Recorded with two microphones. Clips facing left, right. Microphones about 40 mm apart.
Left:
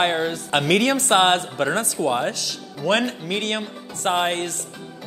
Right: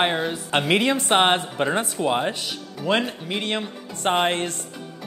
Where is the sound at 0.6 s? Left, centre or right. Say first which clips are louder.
Left 2 dB; centre.